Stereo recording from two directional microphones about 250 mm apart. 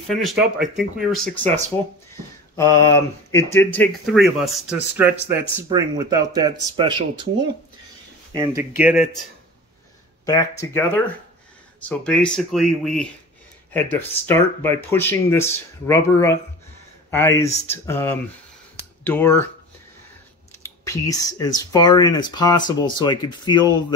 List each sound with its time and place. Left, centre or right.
0.1 s speech: centre
8.7 s speech: centre
10.2 s speech: centre
20.6 s speech: centre